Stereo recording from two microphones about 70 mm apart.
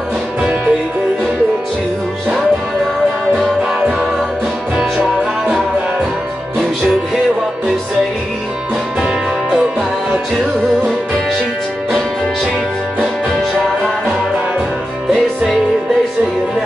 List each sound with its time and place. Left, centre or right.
0.4 s music: centre
9.6 s music: right